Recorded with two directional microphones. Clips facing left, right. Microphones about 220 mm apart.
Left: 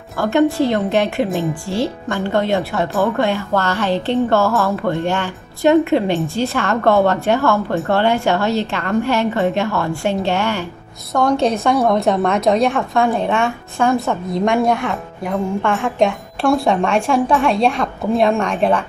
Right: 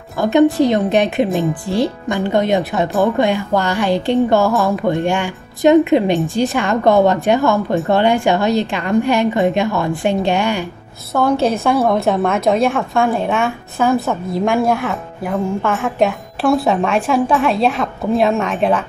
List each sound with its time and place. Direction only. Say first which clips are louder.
0.2 s a woman's voice: right 3 dB; 15° right (ahead or behind)
11.1 s a woman's voice: right 1 dB; 5° right (ahead or behind)